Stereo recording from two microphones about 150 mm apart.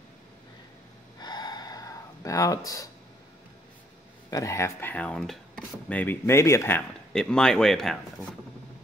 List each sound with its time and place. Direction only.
1.2 s a sound: 30° left (ahead or behind)
4.3 s speech: 20° left (ahead or behind)
7.1 s speech: 5° left (ahead or behind)